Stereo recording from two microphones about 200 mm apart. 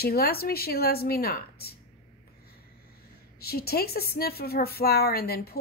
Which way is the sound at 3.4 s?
50° left (ahead or behind).